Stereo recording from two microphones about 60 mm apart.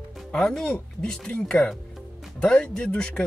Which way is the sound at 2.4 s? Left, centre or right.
Centre.